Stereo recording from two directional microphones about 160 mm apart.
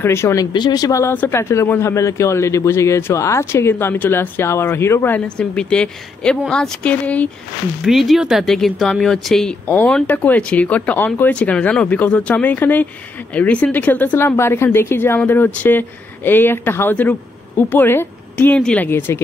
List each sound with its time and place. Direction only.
0.0 s speech: 15° left (ahead or behind)
0.5 s speech: 25° left (ahead or behind)